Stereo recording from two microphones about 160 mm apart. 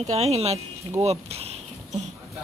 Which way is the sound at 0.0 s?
40° right (ahead or behind).